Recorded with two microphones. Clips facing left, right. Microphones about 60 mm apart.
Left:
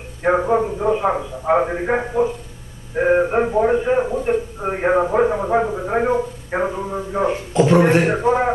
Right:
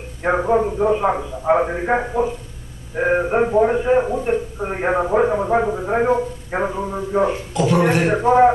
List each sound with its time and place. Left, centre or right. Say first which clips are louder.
0.2 s a man's voice: even; centre
7.5 s speech: left 4 dB; left
8.1 s a man's voice: right 4 dB; centre